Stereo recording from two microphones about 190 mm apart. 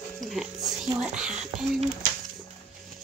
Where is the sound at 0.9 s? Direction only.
5° right (ahead or behind).